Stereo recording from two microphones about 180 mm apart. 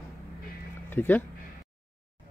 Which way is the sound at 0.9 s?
10° left (ahead or behind).